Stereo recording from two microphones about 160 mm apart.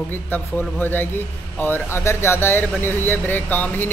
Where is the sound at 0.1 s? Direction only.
10° left (ahead or behind).